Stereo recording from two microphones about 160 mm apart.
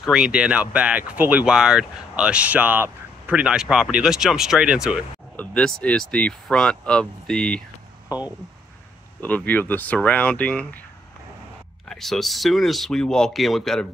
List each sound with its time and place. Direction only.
0.0 s speech: 5° right (ahead or behind)
5.3 s speech: 10° left (ahead or behind)
8.1 s speech: 25° left (ahead or behind)
9.2 s speech: 10° left (ahead or behind)
11.9 s speech: centre (ahead or behind)